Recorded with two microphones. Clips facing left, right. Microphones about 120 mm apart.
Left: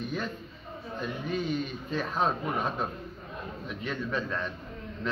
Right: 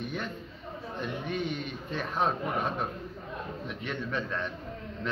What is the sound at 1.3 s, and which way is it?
Speech, 65° right (ahead or behind).